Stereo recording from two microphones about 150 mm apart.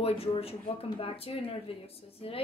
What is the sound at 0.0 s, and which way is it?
A woman's voice, 40° left (ahead or behind).